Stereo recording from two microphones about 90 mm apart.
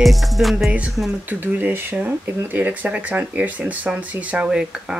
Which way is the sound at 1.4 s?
20° right (ahead or behind).